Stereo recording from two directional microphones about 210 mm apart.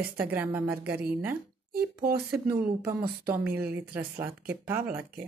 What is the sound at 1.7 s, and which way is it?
Speech, 45° right (ahead or behind).